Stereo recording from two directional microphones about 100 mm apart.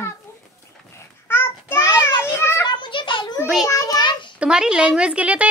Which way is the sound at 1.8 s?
35° left (ahead or behind).